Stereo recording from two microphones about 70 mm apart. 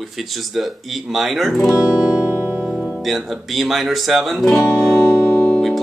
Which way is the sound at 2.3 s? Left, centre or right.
Right.